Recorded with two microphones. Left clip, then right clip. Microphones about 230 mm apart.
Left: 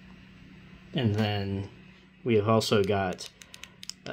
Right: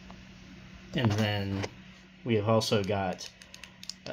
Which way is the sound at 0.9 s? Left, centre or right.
Left.